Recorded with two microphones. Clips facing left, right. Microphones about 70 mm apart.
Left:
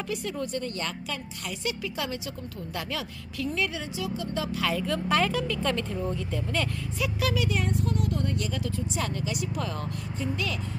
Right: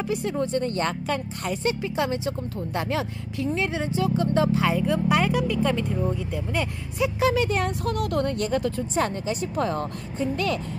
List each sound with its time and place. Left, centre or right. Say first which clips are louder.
0.1 s speech: right 6 dB; right
7.6 s speech: right 3 dB; right